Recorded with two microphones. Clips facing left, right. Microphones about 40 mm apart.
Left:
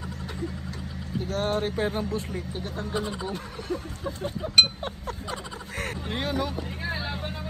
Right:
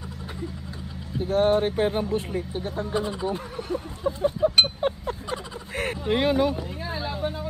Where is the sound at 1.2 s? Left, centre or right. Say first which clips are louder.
Right 7 dB; right.